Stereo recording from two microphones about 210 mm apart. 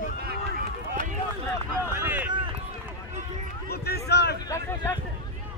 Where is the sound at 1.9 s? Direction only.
10° right (ahead or behind).